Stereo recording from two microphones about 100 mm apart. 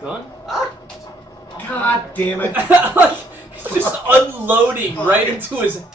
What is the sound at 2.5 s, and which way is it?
A man's voice, 20° right (ahead or behind).